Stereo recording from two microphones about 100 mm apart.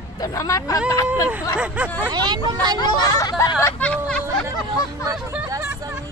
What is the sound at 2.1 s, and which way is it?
Speech, 45° right (ahead or behind).